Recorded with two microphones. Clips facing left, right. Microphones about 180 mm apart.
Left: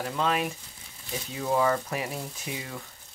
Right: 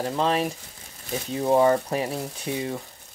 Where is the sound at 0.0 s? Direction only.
35° right (ahead or behind).